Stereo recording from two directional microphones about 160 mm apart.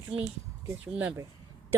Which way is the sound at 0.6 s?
10° right (ahead or behind).